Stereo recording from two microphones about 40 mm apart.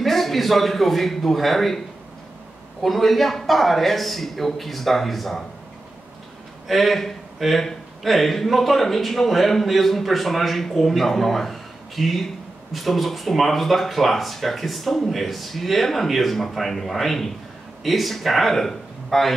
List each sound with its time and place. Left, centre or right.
0.0 s a man's voice: centre
2.8 s a man's voice: centre
6.7 s a man's voice: centre